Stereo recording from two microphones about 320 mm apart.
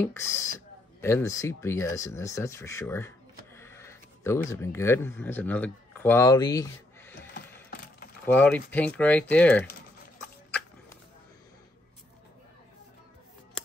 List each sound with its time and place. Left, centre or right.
0.0 s speech: centre
3.5 s a sound: centre
4.5 s speech: centre
7.2 s mechanisms: left
8.3 s speech: centre